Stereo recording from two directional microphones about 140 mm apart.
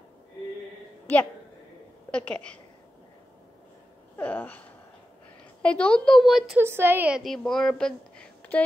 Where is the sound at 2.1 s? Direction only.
10° left (ahead or behind).